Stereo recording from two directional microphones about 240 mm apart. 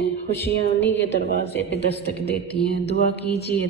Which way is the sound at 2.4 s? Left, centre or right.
Left.